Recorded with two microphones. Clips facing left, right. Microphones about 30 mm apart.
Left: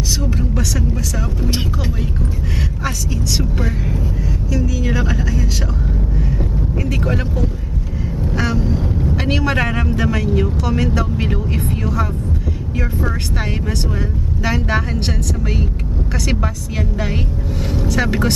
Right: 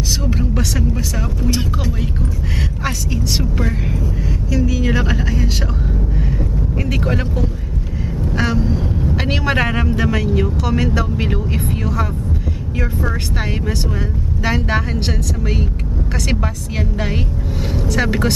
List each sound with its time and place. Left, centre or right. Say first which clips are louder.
0.4 s a sound: right 1 dB; centre
4.5 s speech: right 3 dB; centre
6.8 s speech: right 1 dB; centre
8.3 s vehicle: right 1 dB; centre
9.1 s speech: even; centre
14.4 s speech: even; centre
17.8 s speech: even; centre